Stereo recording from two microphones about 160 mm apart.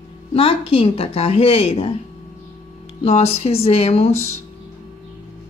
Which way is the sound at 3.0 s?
40° left (ahead or behind).